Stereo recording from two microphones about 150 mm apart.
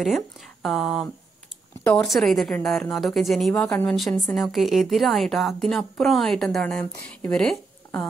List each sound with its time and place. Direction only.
0.0 s a woman's voice: centre (ahead or behind)